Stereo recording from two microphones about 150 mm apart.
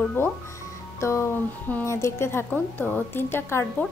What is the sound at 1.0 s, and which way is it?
A woman's voice, 20° left (ahead or behind).